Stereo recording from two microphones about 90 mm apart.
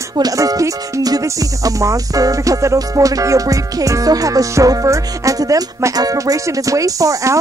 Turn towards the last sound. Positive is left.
turn(degrees=-35)  # may be behind; listen again after turning